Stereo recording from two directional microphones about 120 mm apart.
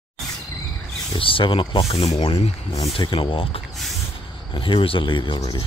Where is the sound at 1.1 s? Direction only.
45° left (ahead or behind).